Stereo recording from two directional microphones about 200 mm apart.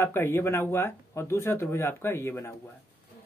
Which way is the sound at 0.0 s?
10° left (ahead or behind).